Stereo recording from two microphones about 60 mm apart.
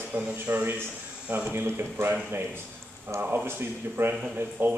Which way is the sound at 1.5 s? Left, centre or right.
Right.